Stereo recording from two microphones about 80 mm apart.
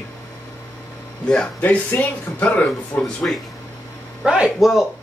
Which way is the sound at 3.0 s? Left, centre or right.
Centre.